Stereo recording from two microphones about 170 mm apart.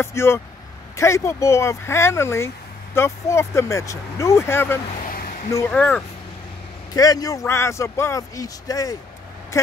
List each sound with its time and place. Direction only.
0.0 s speech: 15° left (ahead or behind)
5.0 s a sound: 55° left (ahead or behind)
5.5 s speech: 10° left (ahead or behind)
6.9 s a man's voice: 20° left (ahead or behind)